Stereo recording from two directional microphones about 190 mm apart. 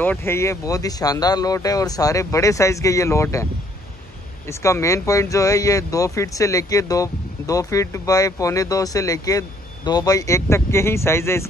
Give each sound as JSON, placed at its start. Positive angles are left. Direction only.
{"t": 0.0, "sound": "speech", "side_deg": 10}
{"t": 4.5, "sound": "speech", "side_deg": 15}